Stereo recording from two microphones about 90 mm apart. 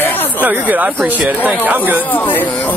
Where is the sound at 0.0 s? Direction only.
20° left (ahead or behind).